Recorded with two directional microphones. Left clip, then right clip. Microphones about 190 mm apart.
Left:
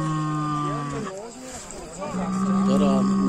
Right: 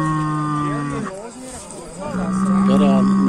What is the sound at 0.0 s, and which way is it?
Music, 65° left (ahead or behind).